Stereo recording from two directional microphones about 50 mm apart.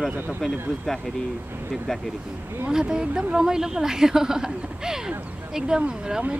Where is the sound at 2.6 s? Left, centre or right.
Centre.